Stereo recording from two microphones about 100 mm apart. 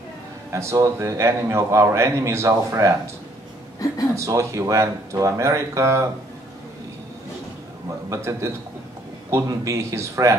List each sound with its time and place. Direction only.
0.5 s a man's voice: 30° right (ahead or behind)
4.1 s speech: 30° right (ahead or behind)
8.1 s a man's voice: 30° right (ahead or behind)